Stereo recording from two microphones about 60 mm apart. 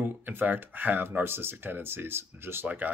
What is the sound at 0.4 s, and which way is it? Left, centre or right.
Speech, right.